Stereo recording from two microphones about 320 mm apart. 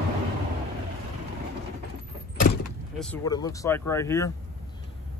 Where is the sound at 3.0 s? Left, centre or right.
Centre.